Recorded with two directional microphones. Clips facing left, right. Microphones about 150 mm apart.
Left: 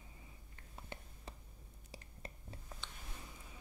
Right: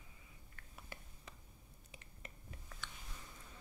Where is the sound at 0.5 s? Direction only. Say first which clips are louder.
Left 4 dB; 25° left (ahead or behind).